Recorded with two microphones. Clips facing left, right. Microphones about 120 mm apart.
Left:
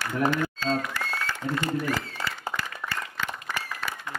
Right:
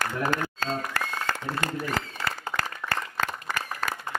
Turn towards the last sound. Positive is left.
turn(degrees=-45)  # may be behind; listen again after turning